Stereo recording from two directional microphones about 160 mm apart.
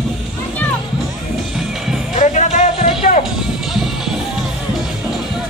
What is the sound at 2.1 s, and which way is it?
Music, 45° left (ahead or behind).